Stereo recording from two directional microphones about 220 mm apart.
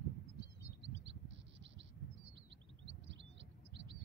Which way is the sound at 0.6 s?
55° right (ahead or behind).